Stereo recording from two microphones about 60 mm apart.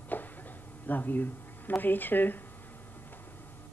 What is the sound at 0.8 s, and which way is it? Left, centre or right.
Speech, left.